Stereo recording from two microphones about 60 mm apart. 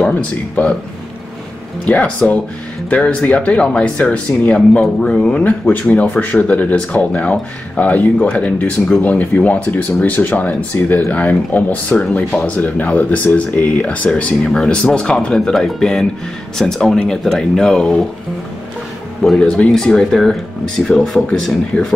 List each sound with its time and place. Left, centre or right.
0.0 s speech: left
1.9 s speech: left
19.2 s speech: centre